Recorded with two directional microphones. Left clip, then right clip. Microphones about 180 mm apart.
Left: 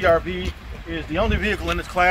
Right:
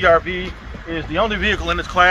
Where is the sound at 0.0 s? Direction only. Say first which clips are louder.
Right 4 dB; 20° left (ahead or behind).